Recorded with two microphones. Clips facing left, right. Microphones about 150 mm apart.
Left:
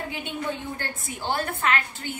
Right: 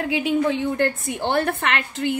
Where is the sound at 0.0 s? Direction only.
90° right.